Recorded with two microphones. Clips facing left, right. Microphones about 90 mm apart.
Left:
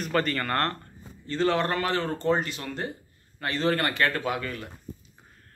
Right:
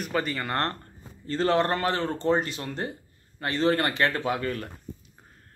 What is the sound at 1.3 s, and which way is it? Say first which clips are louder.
Speech: right 1 dB; 35° right (ahead or behind).